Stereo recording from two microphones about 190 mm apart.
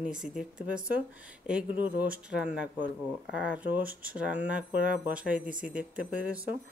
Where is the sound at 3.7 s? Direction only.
50° right (ahead or behind).